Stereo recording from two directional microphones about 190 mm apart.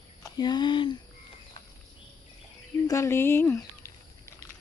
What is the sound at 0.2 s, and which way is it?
Speech, 20° left (ahead or behind).